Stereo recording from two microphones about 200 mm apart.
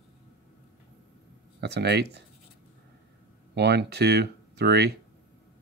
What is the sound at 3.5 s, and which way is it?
Speech, 55° right (ahead or behind).